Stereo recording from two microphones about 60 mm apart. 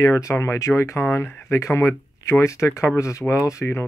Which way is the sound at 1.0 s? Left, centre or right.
Left.